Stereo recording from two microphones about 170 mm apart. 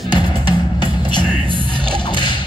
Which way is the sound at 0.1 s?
25° left (ahead or behind).